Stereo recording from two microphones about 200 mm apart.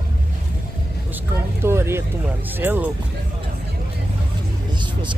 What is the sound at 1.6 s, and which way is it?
Speech, 10° right (ahead or behind).